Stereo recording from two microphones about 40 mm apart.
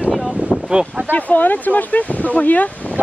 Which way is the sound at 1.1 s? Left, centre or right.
Left.